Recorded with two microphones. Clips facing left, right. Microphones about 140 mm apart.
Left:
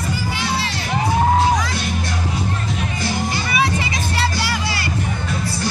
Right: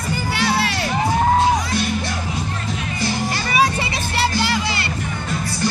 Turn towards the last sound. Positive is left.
turn(degrees=-25)  # may be behind; listen again after turning